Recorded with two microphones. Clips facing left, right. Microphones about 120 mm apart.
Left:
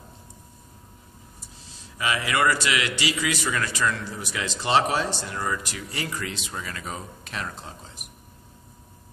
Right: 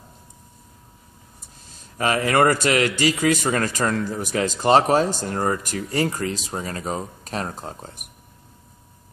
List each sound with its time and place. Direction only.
1.8 s a man's voice: 45° right (ahead or behind)